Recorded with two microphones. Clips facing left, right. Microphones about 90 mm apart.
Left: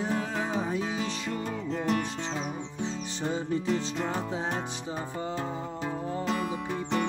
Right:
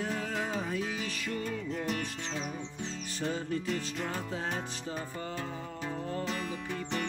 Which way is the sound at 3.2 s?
20° left (ahead or behind).